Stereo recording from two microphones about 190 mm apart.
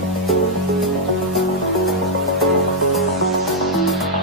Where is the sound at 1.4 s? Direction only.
Centre (ahead or behind).